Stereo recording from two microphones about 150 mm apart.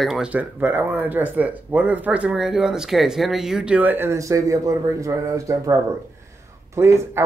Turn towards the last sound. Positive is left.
turn(degrees=-15)  # may be behind; listen again after turning